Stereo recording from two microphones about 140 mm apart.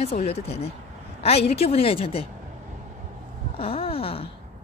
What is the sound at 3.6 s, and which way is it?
Speech, 45° left (ahead or behind).